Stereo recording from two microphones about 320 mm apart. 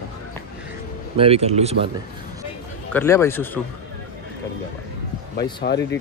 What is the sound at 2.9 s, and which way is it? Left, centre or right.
Speech, centre.